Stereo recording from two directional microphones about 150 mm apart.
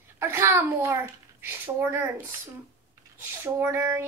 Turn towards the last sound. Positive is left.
turn(degrees=-15)  # may be behind; listen again after turning